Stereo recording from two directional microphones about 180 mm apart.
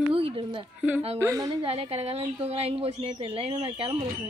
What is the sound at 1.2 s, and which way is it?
Speech, 20° right (ahead or behind).